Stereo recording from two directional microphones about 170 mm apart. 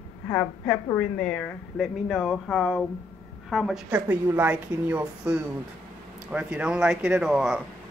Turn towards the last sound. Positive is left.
turn(degrees=0)  # may be behind; listen again after turning